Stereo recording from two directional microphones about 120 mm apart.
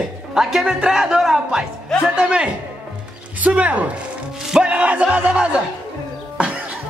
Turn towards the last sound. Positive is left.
turn(degrees=-10)  # may be behind; listen again after turning